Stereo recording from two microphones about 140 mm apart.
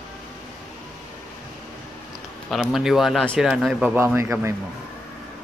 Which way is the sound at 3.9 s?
15° right (ahead or behind).